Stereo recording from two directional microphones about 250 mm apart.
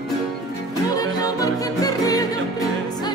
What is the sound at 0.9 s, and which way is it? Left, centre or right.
Music, centre.